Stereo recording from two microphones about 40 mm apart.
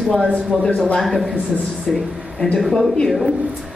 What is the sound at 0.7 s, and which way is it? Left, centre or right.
Speech, left.